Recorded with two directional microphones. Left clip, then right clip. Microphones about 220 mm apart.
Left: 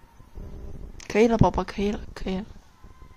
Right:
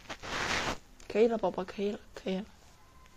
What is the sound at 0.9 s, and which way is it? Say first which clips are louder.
Speech: left 7 dB; 30° left (ahead or behind).